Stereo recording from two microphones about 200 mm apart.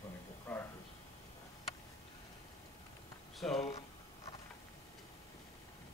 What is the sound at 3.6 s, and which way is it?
Speech, 35° left (ahead or behind).